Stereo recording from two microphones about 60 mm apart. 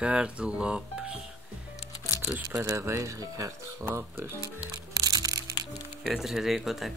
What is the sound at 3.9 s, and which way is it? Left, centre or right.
Speech, right.